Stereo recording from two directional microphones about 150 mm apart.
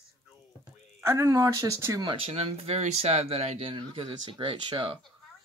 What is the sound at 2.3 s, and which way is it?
Speech, 45° right (ahead or behind).